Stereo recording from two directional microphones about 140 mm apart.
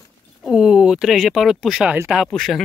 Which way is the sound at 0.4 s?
5° right (ahead or behind).